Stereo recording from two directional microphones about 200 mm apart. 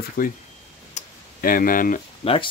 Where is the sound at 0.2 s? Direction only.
45° left (ahead or behind).